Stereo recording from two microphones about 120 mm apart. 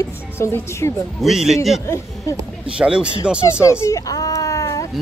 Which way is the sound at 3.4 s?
25° left (ahead or behind).